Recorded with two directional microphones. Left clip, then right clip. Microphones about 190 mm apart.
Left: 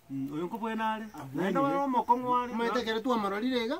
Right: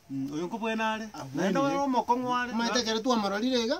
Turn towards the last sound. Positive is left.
turn(degrees=-25)  # may be behind; listen again after turning